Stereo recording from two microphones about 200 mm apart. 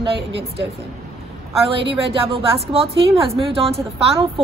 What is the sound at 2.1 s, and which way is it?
A woman's voice, 25° right (ahead or behind).